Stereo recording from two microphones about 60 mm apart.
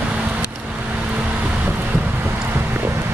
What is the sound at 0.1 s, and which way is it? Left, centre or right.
Vehicle, right.